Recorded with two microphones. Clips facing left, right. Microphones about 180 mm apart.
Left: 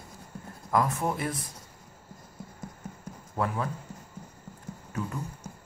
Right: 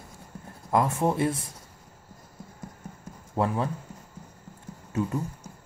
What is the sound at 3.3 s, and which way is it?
Speech, 25° right (ahead or behind).